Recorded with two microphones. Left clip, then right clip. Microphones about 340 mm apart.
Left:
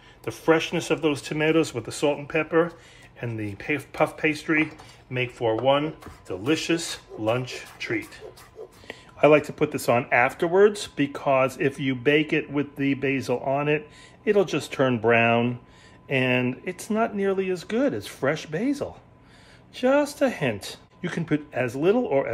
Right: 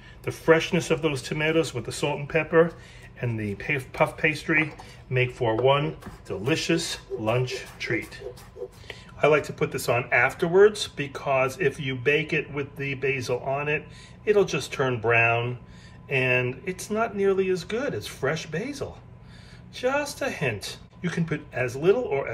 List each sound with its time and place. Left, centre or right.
0.3 s speech: centre
8.8 s speech: left